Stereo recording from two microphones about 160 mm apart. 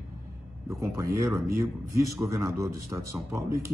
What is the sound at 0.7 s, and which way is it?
A man's voice, 20° right (ahead or behind).